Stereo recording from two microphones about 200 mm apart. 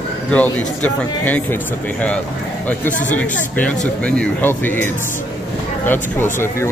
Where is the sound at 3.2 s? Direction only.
5° left (ahead or behind).